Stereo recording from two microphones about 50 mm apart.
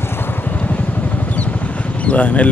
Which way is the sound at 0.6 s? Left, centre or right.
Left.